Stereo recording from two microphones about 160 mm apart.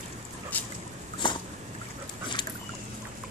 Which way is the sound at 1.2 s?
30° left (ahead or behind).